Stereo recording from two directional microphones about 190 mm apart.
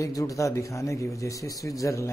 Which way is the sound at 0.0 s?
15° left (ahead or behind).